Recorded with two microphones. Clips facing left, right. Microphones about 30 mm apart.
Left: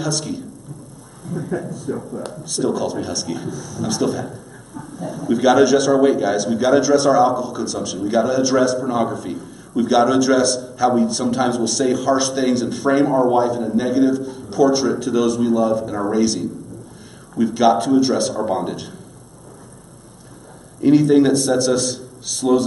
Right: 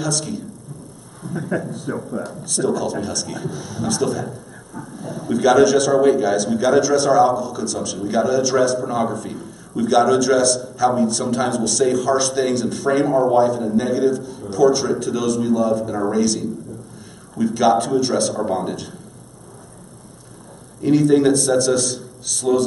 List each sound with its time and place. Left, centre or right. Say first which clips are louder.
0.0 s a man's voice: even; centre
1.5 s speech: right 3 dB; right
2.4 s a man's voice: left 1 dB; centre
3.4 s speech: right 1 dB; right
3.8 s a man's voice: even; centre
20.8 s a man's voice: left 2 dB; centre